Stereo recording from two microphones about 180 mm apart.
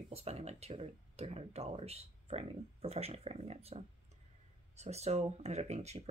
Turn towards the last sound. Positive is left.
turn(degrees=-35)  # may be behind; listen again after turning